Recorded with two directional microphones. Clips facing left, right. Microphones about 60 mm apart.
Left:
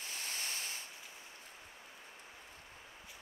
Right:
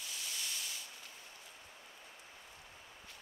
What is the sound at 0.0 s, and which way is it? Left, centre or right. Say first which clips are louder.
Sanding: left 2 dB; left.